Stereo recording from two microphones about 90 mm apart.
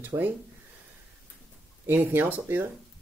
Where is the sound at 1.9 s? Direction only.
20° right (ahead or behind).